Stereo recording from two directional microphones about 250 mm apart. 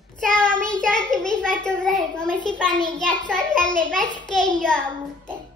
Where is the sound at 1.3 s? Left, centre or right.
Centre.